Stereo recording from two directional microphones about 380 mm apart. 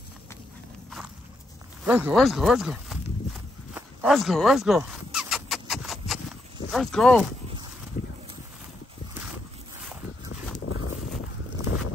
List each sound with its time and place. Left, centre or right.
0.8 s walk: centre
1.9 s speech: centre
3.7 s squeal: centre
6.7 s speech: centre
9.8 s a sound: centre
10.7 s a sound: left
11.6 s boat: left